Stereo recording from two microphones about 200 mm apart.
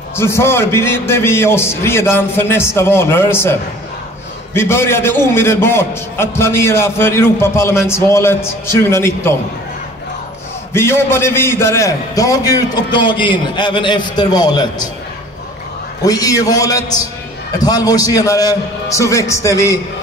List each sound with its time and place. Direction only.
0.1 s a man's voice: 10° left (ahead or behind)
4.6 s a man's voice: 10° left (ahead or behind)
10.7 s a man's voice: 10° left (ahead or behind)
16.0 s a man's voice: 20° left (ahead or behind)